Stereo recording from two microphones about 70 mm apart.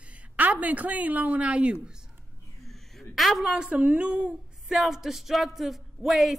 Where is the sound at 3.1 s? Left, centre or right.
Centre.